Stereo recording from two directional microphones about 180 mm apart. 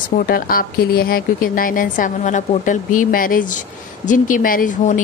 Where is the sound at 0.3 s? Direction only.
55° left (ahead or behind).